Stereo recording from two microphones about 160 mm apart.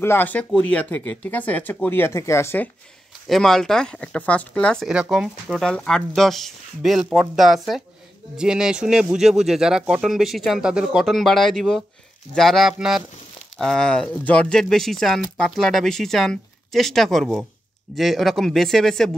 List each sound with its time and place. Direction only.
0.0 s speech: 15° left (ahead or behind)
3.3 s speech: centre (ahead or behind)